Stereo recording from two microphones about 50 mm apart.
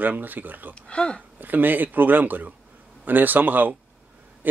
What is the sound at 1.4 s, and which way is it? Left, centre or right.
Speech, right.